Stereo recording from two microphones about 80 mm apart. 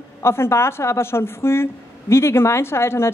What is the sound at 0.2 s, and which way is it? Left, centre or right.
A woman's voice, left.